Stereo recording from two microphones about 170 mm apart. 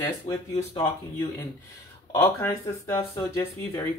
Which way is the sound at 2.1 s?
15° left (ahead or behind).